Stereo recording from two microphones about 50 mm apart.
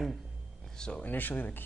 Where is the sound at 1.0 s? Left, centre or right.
Left.